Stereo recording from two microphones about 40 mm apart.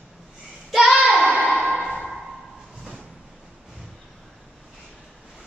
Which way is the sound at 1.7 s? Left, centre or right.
Centre.